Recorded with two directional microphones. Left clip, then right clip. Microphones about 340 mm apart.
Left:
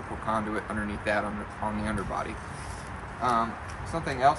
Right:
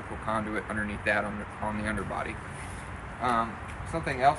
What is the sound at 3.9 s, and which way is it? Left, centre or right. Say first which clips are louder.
Speech: left 1 dB; centre.